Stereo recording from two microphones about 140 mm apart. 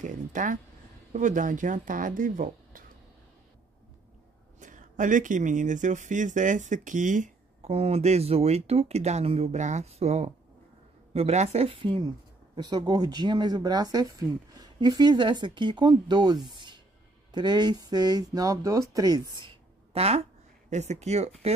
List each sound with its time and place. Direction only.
0.0 s speech: 65° right (ahead or behind)
4.6 s speech: 65° right (ahead or behind); by 16.4 s 30° right (ahead or behind)
16.5 s music: 35° right (ahead or behind)
17.3 s speech: 30° right (ahead or behind); by 21.3 s 50° right (ahead or behind)